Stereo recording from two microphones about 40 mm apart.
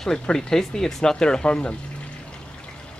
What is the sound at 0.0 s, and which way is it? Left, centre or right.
Speech, centre.